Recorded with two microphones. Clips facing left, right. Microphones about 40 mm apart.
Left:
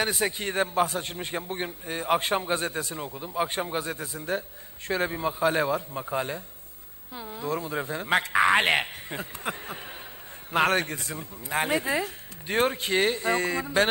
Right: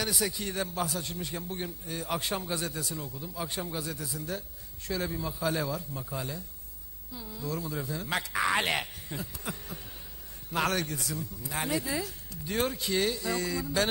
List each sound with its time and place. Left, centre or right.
0.0 s a man's voice: left